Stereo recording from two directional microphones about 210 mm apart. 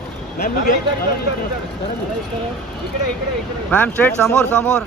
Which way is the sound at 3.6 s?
10° left (ahead or behind).